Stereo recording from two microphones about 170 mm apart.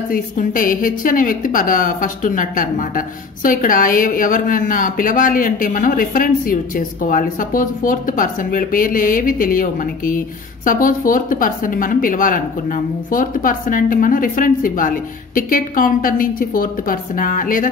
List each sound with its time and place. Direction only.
0.1 s a woman's voice: 55° left (ahead or behind)